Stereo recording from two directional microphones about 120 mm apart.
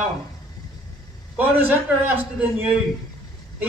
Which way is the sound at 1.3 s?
15° right (ahead or behind).